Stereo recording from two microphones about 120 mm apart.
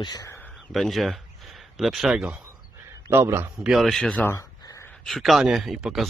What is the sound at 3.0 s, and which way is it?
Speech, 20° right (ahead or behind).